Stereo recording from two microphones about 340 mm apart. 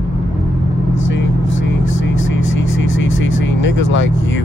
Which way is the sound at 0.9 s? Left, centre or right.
Left.